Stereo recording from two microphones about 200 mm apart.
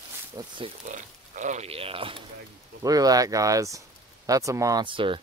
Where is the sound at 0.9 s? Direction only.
35° right (ahead or behind).